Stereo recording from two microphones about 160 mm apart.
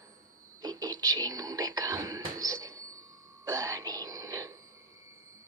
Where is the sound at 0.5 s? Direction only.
25° right (ahead or behind).